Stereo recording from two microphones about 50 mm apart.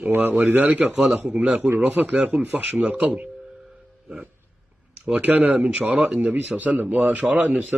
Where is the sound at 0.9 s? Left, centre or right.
Centre.